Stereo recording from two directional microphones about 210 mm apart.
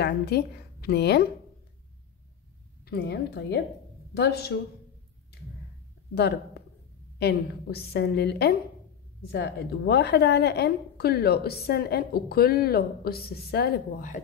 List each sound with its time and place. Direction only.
0.0 s a woman's voice: 50° left (ahead or behind)
2.8 s a woman's voice: 50° left (ahead or behind)
6.1 s a woman's voice: 50° left (ahead or behind)